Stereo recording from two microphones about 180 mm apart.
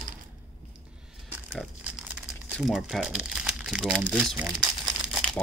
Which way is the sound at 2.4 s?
Centre (ahead or behind).